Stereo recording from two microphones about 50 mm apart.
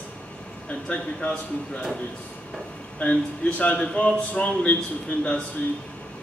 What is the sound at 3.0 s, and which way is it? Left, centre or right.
A man's voice, left.